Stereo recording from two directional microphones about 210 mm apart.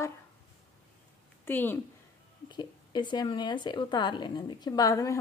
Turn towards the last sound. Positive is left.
turn(degrees=15)  # may be behind; listen again after turning